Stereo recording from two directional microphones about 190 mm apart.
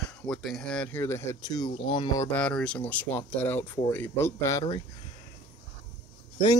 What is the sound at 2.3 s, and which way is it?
Speech, 5° left (ahead or behind).